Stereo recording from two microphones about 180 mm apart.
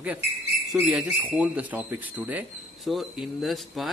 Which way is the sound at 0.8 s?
5° right (ahead or behind).